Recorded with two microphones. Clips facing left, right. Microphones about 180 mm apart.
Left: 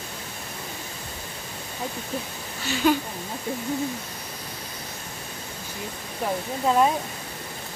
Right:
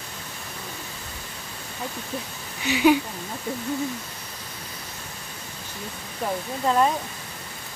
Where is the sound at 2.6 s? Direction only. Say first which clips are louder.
Right 3 dB; 15° right (ahead or behind).